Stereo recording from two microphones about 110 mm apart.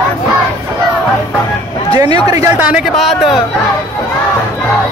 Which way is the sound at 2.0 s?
35° right (ahead or behind).